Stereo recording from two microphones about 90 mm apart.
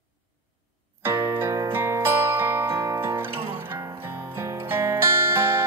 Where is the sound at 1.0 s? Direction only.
30° right (ahead or behind).